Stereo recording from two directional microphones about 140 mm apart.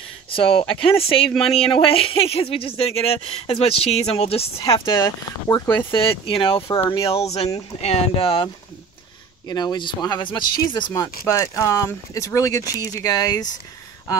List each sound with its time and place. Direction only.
0.3 s speech: 40° left (ahead or behind)
4.7 s speech: 30° left (ahead or behind)
9.5 s speech: 30° left (ahead or behind)
11.2 s speech: 20° left (ahead or behind)